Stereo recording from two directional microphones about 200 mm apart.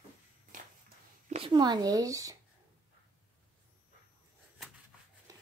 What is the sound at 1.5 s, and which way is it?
Speech, 20° right (ahead or behind).